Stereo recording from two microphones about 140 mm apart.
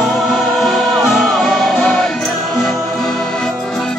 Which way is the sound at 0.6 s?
Centre (ahead or behind).